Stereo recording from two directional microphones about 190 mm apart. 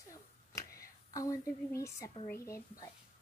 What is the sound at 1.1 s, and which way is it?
Speech, 15° left (ahead or behind).